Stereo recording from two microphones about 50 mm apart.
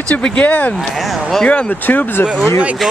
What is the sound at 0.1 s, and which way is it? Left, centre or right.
Speech, left.